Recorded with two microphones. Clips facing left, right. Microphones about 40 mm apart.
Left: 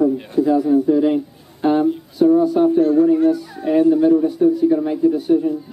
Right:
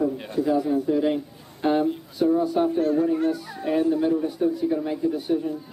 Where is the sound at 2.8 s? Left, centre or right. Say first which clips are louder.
Left 9 dB; left.